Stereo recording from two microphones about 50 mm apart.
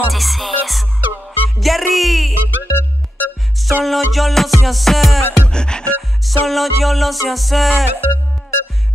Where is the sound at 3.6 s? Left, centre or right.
Centre.